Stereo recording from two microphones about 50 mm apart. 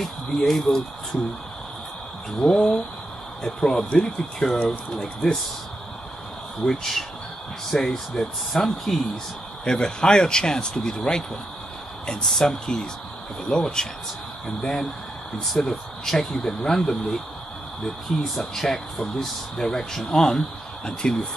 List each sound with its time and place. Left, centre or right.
0.0 s speech: centre
2.4 s speech: centre
6.6 s speech: centre
9.7 s speech: centre
18.4 s speech: centre